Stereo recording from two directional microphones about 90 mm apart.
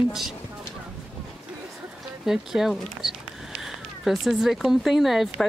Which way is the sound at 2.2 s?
5° right (ahead or behind).